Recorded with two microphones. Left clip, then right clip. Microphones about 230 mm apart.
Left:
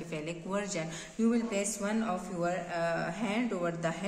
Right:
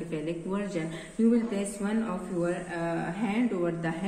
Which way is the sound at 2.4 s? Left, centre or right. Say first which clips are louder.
Right 2 dB; left.